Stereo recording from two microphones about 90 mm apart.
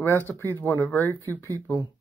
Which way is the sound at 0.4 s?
25° left (ahead or behind).